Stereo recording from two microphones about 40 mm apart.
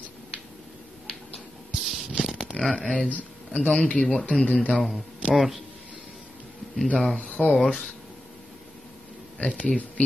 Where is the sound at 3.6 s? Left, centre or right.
Centre.